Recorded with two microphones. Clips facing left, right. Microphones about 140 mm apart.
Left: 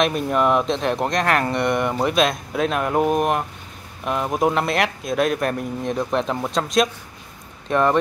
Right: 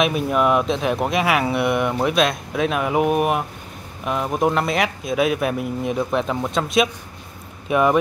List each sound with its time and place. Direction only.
0.0 s speech: 5° right (ahead or behind)